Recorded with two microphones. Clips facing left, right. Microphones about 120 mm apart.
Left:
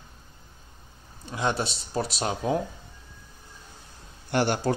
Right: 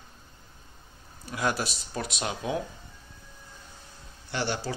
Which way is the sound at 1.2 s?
25° left (ahead or behind).